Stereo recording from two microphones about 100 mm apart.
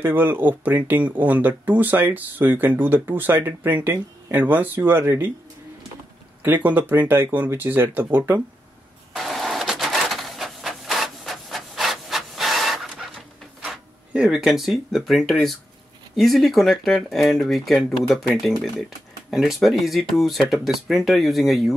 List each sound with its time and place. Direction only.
0.0 s speech: 20° right (ahead or behind)
6.4 s speech: 15° right (ahead or behind)
9.1 s printer: centre (ahead or behind)
13.7 s speech: 5° right (ahead or behind)